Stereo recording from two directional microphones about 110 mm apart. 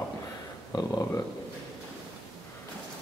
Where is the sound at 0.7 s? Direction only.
35° left (ahead or behind).